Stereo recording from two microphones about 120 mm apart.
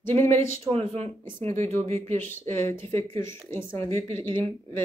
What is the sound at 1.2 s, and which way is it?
A woman's voice, 20° left (ahead or behind).